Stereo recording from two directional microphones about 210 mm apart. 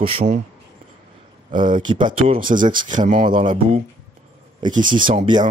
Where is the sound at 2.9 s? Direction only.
35° right (ahead or behind).